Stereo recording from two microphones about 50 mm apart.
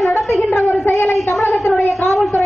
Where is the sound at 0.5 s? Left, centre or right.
Left.